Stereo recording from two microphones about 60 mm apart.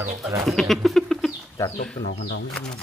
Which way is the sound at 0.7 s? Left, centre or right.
Centre.